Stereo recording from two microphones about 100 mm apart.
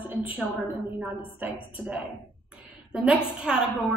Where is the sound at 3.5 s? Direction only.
5° right (ahead or behind).